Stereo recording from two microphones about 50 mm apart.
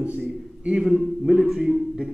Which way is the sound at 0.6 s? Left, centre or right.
Right.